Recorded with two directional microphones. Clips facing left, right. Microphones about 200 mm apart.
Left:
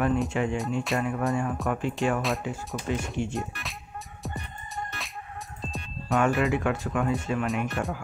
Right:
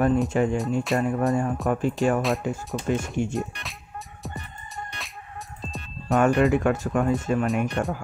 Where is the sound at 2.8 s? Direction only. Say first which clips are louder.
Right 5 dB; 25° right (ahead or behind).